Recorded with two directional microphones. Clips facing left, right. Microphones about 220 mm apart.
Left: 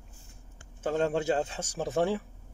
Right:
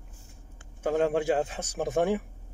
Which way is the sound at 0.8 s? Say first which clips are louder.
Right 3 dB; 15° right (ahead or behind).